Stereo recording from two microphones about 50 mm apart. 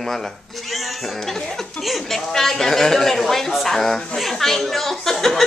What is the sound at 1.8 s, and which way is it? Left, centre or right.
Speech, centre.